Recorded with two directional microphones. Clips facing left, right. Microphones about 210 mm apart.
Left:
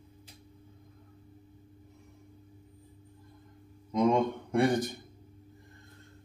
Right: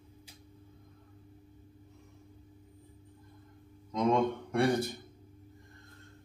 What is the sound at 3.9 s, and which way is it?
Speech, 15° left (ahead or behind).